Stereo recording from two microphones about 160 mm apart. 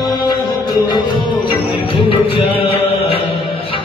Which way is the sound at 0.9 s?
30° left (ahead or behind).